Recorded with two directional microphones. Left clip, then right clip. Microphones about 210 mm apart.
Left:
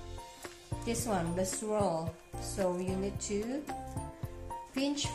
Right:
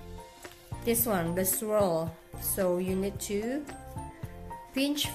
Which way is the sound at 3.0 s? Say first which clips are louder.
Right 4 dB; 30° right (ahead or behind).